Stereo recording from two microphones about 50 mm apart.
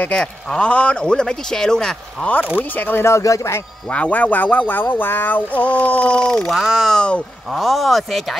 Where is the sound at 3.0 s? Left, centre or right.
Left.